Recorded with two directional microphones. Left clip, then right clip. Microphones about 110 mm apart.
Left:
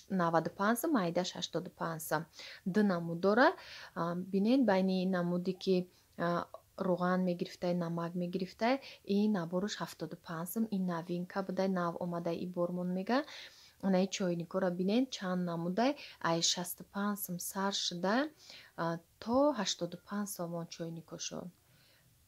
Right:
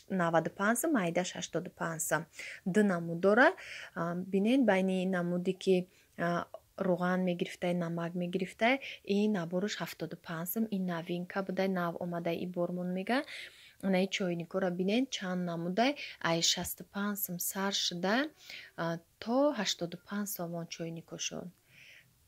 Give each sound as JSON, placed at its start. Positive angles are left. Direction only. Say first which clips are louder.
{"t": 0.2, "sound": "speech", "louder": "right 1 dB", "side_deg": -15}
{"t": 9.0, "sound": "speech", "louder": "right 2 dB", "side_deg": -5}